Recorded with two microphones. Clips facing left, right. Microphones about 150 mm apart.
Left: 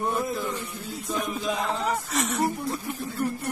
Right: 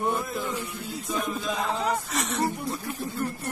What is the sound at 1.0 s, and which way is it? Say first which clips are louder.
Music: even; centre (ahead or behind).